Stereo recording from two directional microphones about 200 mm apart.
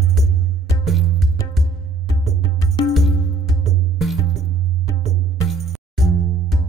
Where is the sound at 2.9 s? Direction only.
Centre (ahead or behind).